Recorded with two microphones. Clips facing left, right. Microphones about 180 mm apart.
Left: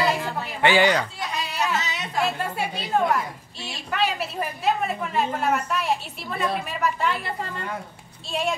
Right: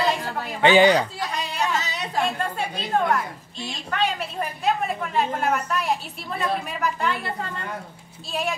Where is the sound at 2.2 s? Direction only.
5° left (ahead or behind).